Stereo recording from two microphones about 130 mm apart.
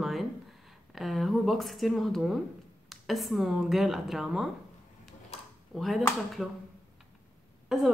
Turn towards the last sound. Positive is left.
turn(degrees=0)  # may be behind; listen again after turning